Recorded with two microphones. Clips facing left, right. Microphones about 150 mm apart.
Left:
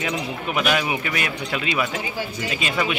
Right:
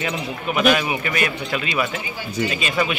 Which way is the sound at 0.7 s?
10° left (ahead or behind).